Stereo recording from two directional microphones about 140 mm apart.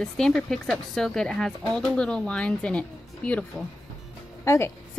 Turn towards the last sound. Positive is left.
turn(degrees=20)  # may be behind; listen again after turning